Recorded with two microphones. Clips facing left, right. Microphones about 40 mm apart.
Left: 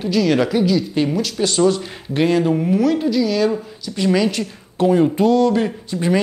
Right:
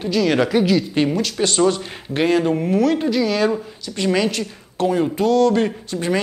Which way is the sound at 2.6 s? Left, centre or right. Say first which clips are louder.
Left 1 dB; centre.